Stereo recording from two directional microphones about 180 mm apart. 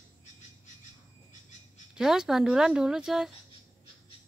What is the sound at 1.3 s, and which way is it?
Bird, 45° left (ahead or behind).